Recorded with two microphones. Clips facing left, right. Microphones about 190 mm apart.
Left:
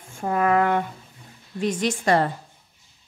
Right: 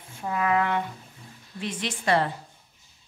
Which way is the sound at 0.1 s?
50° left (ahead or behind).